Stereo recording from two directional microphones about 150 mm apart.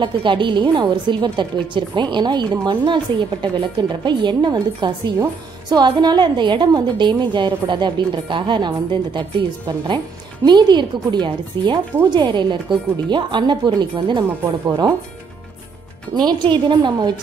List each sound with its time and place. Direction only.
0.0 s a woman's voice: 30° right (ahead or behind)
10.4 s a woman's voice: 30° right (ahead or behind)
16.2 s speech: 30° right (ahead or behind)